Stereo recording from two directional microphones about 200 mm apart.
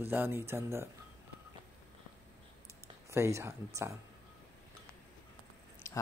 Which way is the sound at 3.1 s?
15° right (ahead or behind).